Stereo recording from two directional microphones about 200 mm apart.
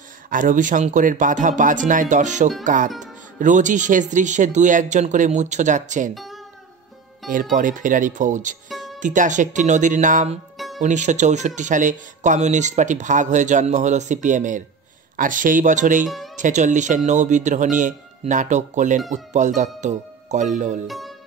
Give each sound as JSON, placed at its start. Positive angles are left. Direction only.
{"t": 0.3, "sound": "speech", "side_deg": -40}
{"t": 6.1, "sound": "music", "side_deg": 0}
{"t": 7.5, "sound": "speech", "side_deg": -40}
{"t": 20.8, "sound": "speech", "side_deg": 0}